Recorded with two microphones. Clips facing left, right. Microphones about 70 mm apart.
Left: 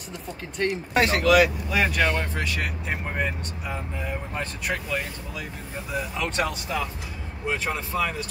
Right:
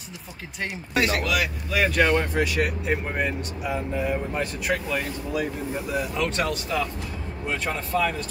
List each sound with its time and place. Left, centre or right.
0.9 s speech: left
1.7 s speech: centre
2.0 s speech: centre
2.9 s speech: centre
5.9 s speech: centre